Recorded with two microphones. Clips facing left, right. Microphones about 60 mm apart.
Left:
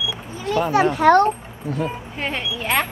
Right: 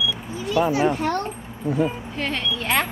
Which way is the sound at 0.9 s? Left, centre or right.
Left.